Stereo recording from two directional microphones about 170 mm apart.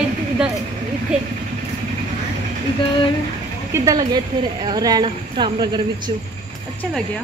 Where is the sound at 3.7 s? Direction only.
20° right (ahead or behind).